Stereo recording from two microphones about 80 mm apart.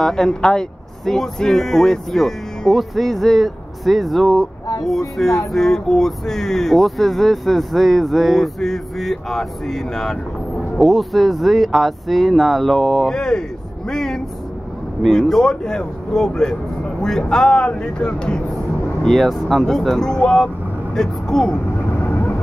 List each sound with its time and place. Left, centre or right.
0.0 s speech: centre
21.9 s vehicle: left